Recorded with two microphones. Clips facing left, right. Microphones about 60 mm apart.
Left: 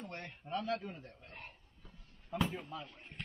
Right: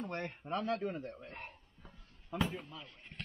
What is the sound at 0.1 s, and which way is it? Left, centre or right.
Speech, right.